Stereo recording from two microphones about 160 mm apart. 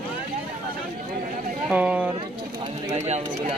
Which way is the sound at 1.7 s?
10° right (ahead or behind).